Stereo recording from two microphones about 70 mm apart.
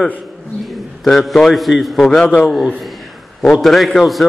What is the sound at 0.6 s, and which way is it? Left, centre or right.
A man's voice, centre.